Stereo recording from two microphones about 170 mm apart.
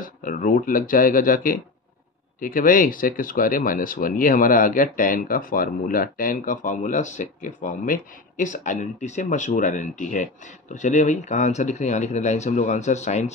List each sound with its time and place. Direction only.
0.0 s speech: 55° left (ahead or behind)